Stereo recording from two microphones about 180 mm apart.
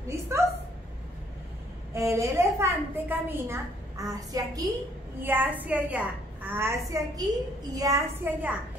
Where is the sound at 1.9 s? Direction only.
15° right (ahead or behind).